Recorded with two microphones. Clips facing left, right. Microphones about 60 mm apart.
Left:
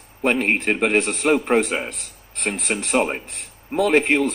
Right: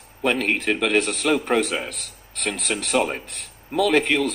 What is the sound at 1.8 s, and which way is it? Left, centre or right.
Speech, right.